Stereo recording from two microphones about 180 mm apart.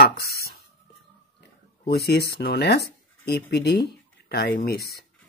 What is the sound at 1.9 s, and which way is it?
Speech, 65° left (ahead or behind).